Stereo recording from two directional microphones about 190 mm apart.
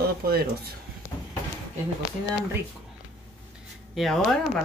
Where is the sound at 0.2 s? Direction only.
55° right (ahead or behind).